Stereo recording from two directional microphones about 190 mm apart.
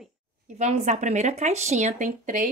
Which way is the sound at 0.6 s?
35° right (ahead or behind).